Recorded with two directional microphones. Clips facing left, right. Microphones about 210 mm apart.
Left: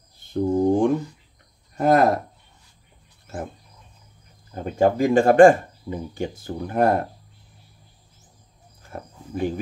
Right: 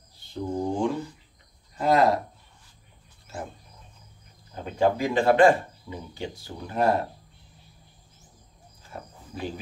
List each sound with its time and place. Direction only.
0.2 s a sound: 50° left (ahead or behind)
1.8 s speech: 50° left (ahead or behind)
4.6 s speech: 45° left (ahead or behind)
8.9 s cricket: 50° left (ahead or behind)